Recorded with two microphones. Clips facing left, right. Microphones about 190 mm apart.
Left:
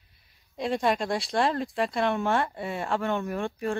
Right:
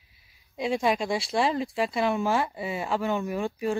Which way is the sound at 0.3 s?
Centre (ahead or behind).